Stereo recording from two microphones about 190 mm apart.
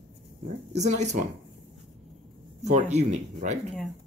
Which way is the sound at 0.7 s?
35° right (ahead or behind).